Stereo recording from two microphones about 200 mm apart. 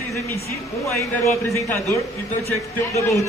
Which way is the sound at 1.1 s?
10° left (ahead or behind).